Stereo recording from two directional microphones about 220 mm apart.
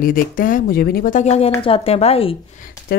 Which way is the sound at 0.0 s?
40° left (ahead or behind).